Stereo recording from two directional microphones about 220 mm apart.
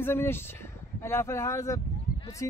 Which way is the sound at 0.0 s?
10° left (ahead or behind).